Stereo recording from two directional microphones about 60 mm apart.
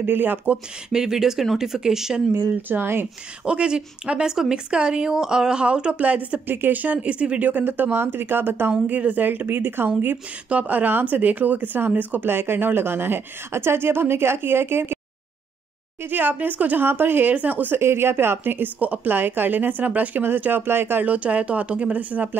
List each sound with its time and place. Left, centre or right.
0.0 s speech: right
0.8 s speech: centre
2.7 s speech: right
3.4 s speech: centre; by 15.0 s right
16.0 s speech: right
17.7 s speech: right
21.0 s speech: right